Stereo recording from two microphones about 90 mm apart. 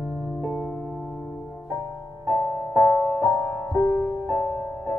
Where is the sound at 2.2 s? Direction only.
20° left (ahead or behind).